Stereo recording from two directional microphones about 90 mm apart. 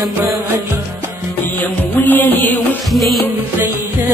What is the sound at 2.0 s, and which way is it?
Music, 20° left (ahead or behind).